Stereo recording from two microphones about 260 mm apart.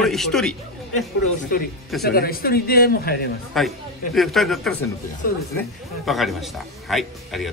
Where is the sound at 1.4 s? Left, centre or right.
Left.